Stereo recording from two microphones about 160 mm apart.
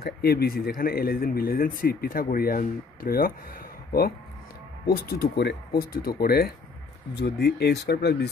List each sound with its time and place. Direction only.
0.0 s speech: 75° left (ahead or behind)
7.2 s speech: 90° left